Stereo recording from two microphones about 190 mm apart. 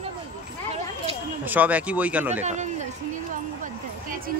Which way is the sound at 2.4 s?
40° right (ahead or behind).